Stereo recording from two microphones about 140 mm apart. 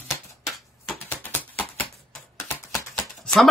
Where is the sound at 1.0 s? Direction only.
15° left (ahead or behind).